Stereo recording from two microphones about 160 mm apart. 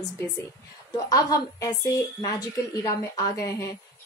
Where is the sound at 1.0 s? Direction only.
25° left (ahead or behind).